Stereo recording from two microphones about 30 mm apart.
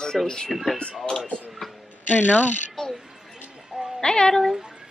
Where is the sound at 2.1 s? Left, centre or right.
Left.